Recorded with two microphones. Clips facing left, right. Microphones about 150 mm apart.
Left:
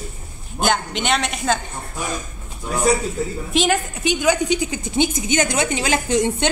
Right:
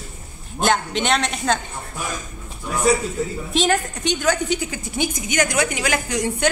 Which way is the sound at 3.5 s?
Centre (ahead or behind).